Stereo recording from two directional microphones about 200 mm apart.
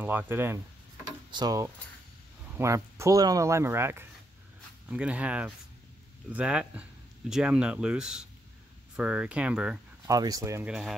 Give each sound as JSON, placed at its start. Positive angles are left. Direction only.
{"t": 0.0, "sound": "speech", "side_deg": -10}
{"t": 10.0, "sound": "speech", "side_deg": -20}
{"t": 10.7, "sound": "speech", "side_deg": -5}